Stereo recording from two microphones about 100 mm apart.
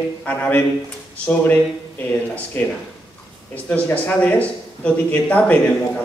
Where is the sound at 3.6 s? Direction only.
15° left (ahead or behind).